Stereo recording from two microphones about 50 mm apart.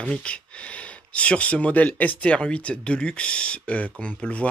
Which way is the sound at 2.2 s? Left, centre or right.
Left.